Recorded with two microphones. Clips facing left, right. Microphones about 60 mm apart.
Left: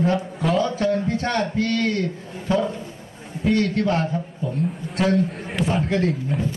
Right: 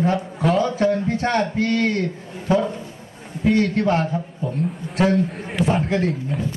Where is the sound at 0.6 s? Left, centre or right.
Right.